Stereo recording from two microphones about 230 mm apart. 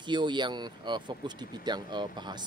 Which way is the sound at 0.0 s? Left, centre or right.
Centre.